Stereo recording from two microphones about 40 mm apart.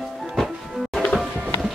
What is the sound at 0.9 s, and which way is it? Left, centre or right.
Music, left.